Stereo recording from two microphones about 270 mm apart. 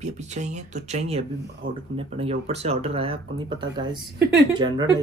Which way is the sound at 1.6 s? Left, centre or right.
Right.